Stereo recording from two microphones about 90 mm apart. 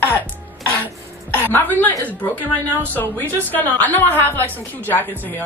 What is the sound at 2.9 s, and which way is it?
A woman's voice, 20° left (ahead or behind).